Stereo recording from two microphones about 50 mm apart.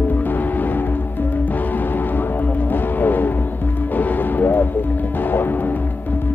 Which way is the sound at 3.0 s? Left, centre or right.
Left.